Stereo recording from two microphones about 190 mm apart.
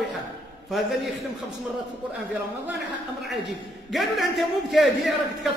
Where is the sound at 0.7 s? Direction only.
Centre (ahead or behind).